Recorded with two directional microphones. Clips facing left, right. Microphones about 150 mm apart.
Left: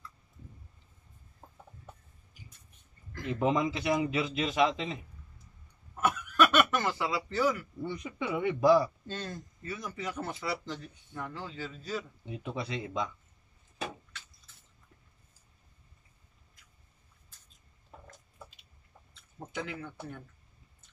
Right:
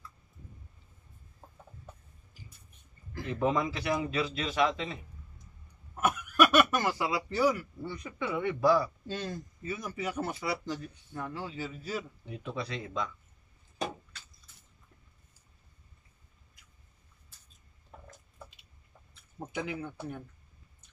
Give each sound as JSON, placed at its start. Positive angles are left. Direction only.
{"t": 3.3, "sound": "a man's voice", "side_deg": 20}
{"t": 5.9, "sound": "a sound", "side_deg": -10}
{"t": 7.8, "sound": "a man's voice", "side_deg": 20}
{"t": 9.0, "sound": "speech", "side_deg": -10}
{"t": 12.3, "sound": "a man's voice", "side_deg": 20}
{"t": 19.1, "sound": "speech", "side_deg": -10}